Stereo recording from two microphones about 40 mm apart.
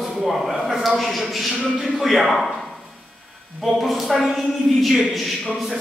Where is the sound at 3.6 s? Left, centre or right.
Centre.